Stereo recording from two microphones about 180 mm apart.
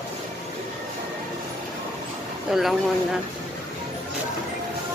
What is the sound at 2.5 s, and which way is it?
Speech, centre (ahead or behind).